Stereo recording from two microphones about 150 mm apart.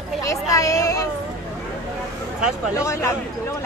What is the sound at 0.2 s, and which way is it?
Speech, 20° left (ahead or behind).